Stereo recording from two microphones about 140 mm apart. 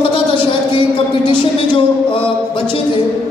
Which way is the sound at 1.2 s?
35° left (ahead or behind).